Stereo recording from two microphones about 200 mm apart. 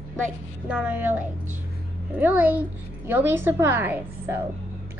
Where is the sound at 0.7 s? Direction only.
5° right (ahead or behind).